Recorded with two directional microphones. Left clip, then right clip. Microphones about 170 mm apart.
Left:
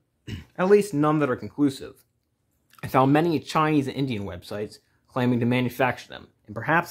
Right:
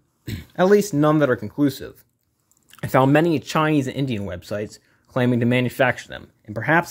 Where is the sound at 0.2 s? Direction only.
15° right (ahead or behind).